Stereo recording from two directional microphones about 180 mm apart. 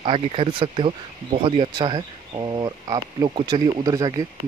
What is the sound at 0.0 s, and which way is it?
Speech, 30° right (ahead or behind).